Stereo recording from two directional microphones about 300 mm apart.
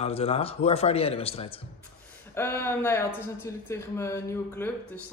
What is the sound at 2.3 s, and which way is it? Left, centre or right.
Speech, centre.